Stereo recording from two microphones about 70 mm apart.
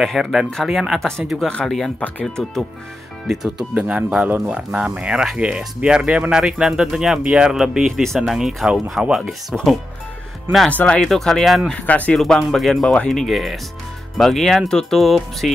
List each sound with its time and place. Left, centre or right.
0.0 s speech: centre
3.3 s speech: centre
7.8 s speech: centre
8.2 s speech: centre
10.7 s speech: left
11.0 s speech: centre
11.8 s speech: left
12.2 s speech: centre